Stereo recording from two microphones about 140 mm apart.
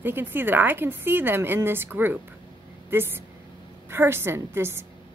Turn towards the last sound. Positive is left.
turn(degrees=-15)  # may be behind; listen again after turning